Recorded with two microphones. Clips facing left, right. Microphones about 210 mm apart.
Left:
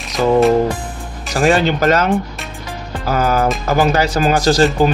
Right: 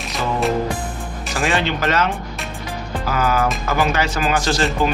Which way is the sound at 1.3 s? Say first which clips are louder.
Left 7 dB; 40° left (ahead or behind).